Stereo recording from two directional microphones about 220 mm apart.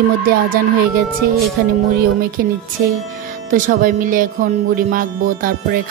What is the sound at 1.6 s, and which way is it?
Speech, 45° right (ahead or behind).